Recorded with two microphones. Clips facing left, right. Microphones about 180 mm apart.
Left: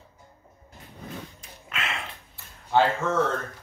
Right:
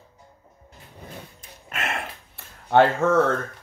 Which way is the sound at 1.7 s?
50° right (ahead or behind).